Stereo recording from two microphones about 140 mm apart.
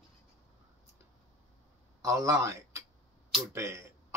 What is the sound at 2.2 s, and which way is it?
Speech, 20° right (ahead or behind).